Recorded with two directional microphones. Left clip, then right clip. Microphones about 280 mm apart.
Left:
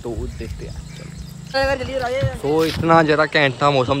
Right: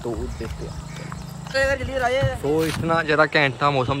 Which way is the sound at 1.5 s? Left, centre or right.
Left.